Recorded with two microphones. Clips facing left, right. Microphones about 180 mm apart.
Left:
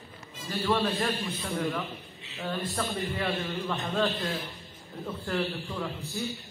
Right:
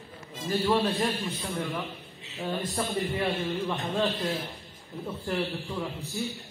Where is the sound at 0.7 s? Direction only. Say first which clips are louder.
Even; 15° right (ahead or behind).